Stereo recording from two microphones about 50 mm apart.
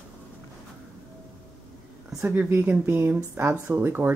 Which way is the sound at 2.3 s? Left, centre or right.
Right.